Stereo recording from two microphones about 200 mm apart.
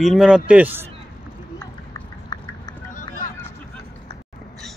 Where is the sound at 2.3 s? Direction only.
20° left (ahead or behind).